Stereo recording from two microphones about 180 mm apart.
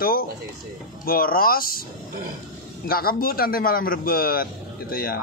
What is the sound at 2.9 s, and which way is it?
Speech, 55° left (ahead or behind).